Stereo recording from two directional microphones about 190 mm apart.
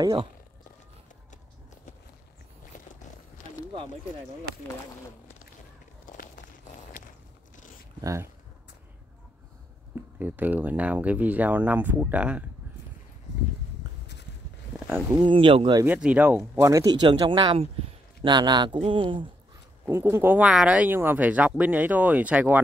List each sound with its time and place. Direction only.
0.0 s a man's voice: 25° right (ahead or behind)
2.7 s a sound: 40° left (ahead or behind)
8.0 s speech: 15° right (ahead or behind)
10.1 s speech: 10° right (ahead or behind)
14.9 s speech: 15° right (ahead or behind)
15.2 s a man's voice: 25° right (ahead or behind)
15.8 s a man's voice: 5° right (ahead or behind); by 19.2 s 25° right (ahead or behind)
19.9 s speech: 10° right (ahead or behind)